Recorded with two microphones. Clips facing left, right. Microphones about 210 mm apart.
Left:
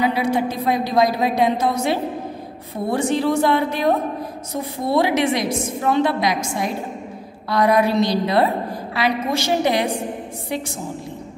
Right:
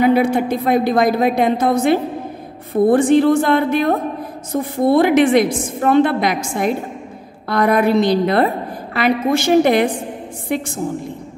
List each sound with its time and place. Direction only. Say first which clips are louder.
0.0 s a woman's voice: right 5 dB; 55° right (ahead or behind)